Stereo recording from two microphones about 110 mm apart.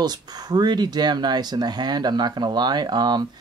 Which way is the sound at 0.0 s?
40° right (ahead or behind).